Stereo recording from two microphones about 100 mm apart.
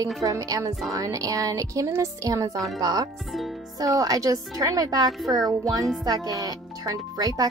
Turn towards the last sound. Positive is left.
turn(degrees=-40)  # may be behind; listen again after turning